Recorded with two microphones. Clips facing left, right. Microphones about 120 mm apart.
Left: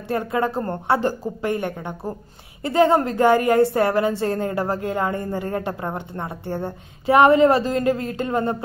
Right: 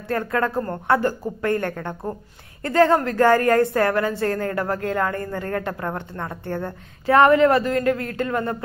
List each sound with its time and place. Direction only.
0.1 s a woman's voice: 20° left (ahead or behind)